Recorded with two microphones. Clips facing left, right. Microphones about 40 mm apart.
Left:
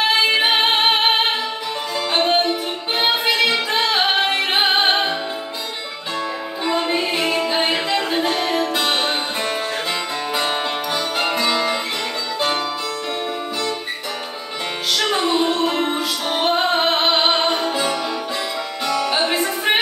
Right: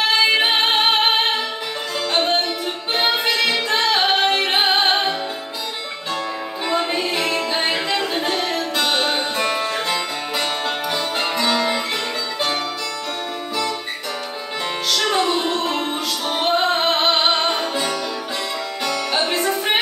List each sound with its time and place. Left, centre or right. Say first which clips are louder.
0.3 s music: even; centre
3.0 s music: left 2 dB; centre
6.6 s music: left 1 dB; centre
7.2 s music: left 2 dB; left
14.9 s music: even; centre